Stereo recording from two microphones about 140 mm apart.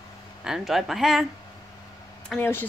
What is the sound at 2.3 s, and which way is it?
Speech, centre (ahead or behind).